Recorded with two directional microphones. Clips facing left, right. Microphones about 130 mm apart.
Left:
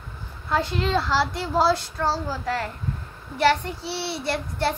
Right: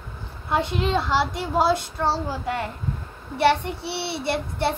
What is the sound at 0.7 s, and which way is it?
Speech, 15° right (ahead or behind).